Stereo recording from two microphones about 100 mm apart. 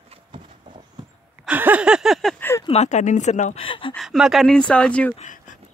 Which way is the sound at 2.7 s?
70° left (ahead or behind).